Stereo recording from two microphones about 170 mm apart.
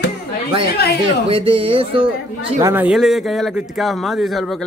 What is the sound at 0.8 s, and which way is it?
Speech, 70° left (ahead or behind).